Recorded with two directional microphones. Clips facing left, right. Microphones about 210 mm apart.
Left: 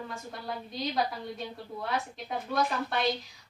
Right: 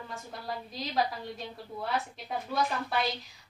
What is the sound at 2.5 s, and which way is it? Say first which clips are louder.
Speech: left 1 dB; centre (ahead or behind).